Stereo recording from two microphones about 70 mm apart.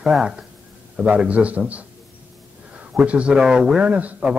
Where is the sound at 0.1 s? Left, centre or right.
Centre.